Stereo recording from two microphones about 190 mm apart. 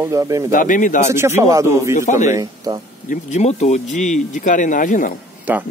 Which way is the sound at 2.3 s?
20° right (ahead or behind).